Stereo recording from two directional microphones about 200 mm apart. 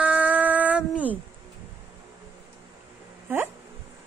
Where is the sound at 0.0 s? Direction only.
5° right (ahead or behind).